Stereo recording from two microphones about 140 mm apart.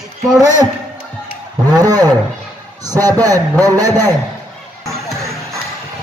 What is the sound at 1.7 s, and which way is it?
A man's voice, 25° right (ahead or behind).